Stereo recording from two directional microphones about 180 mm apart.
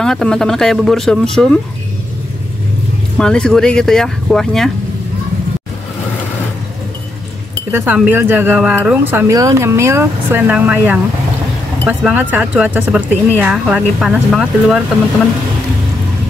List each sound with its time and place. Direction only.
0.0 s speech: 5° left (ahead or behind)
3.2 s speech: 5° left (ahead or behind)
7.7 s speech: 10° right (ahead or behind)